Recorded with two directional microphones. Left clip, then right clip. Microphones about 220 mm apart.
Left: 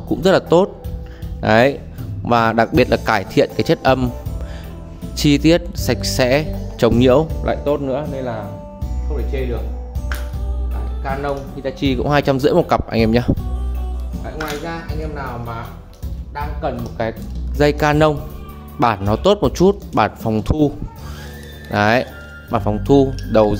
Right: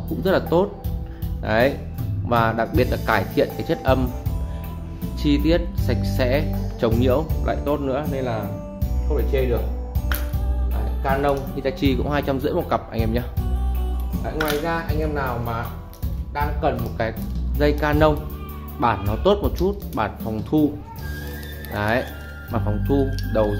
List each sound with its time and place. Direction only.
0.2 s speech: 50° left (ahead or behind)
5.1 s speech: 50° left (ahead or behind); by 8.2 s 25° left (ahead or behind)
9.1 s speech: centre (ahead or behind)
11.8 s speech: 25° left (ahead or behind)
12.1 s speech: 45° left (ahead or behind)
14.2 s speech: 5° right (ahead or behind)
17.0 s speech: 25° left (ahead or behind)
17.6 s speech: 50° left (ahead or behind)
21.7 s speech: 50° left (ahead or behind)